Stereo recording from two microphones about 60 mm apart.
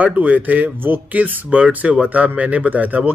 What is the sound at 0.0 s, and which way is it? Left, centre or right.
Speech, right.